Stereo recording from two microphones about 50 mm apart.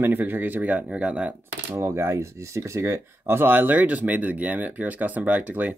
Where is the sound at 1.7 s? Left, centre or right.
Right.